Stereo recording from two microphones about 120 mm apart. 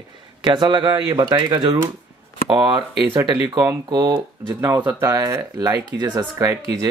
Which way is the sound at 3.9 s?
35° right (ahead or behind).